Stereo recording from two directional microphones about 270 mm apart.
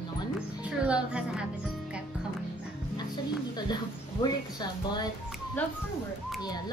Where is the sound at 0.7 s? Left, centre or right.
Centre.